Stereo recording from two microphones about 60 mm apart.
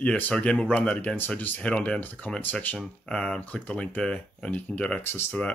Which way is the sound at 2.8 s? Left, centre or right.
Centre.